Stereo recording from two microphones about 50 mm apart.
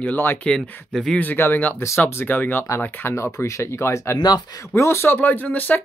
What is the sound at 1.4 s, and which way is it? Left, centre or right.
Speech, left.